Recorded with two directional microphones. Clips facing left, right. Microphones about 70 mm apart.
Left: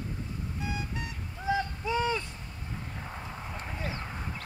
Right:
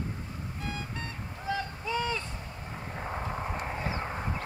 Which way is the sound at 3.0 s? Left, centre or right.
Right.